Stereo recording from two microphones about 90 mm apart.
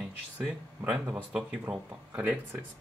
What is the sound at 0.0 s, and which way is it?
Speech, 5° right (ahead or behind).